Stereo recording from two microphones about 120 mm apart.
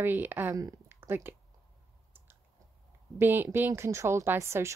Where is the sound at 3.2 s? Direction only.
20° right (ahead or behind).